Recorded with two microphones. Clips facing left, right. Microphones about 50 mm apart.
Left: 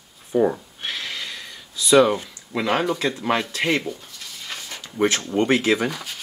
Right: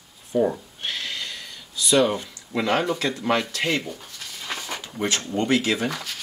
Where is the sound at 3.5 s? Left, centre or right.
Left.